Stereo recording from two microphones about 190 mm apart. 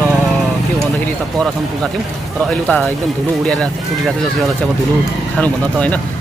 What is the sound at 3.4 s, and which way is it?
Speech, 5° left (ahead or behind).